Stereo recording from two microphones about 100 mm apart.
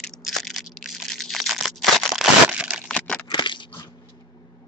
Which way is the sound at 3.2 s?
50° left (ahead or behind).